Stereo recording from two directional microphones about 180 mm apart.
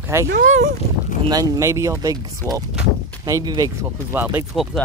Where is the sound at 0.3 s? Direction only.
45° right (ahead or behind).